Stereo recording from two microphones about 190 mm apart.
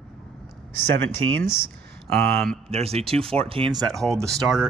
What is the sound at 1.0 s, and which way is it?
Speech, 90° right.